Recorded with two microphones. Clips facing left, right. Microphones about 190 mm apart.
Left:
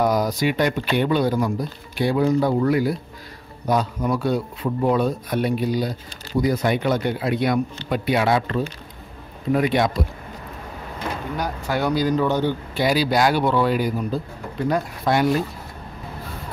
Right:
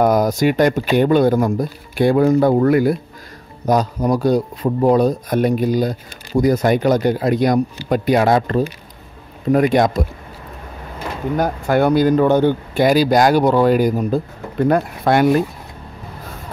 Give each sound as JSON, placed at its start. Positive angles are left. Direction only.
{"t": 0.0, "sound": "speech", "side_deg": -50}
{"t": 3.6, "sound": "speech", "side_deg": -40}
{"t": 11.3, "sound": "speech", "side_deg": -50}